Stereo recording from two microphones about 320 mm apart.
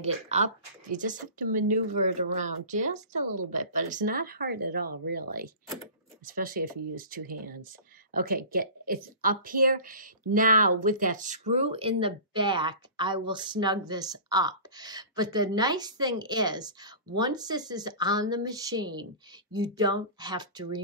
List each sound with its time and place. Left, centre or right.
0.0 s speech: right